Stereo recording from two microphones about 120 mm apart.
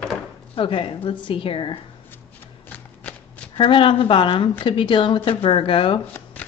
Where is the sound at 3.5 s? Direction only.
45° left (ahead or behind).